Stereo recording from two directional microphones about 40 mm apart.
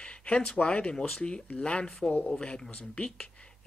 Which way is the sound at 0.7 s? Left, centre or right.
Left.